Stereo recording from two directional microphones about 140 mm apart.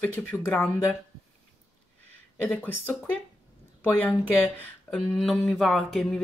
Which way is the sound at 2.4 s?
10° left (ahead or behind).